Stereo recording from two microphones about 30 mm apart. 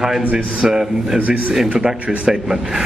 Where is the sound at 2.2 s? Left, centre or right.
Right.